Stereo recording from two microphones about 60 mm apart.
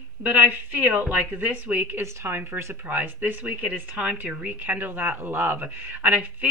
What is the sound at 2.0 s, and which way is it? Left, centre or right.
Speech, right.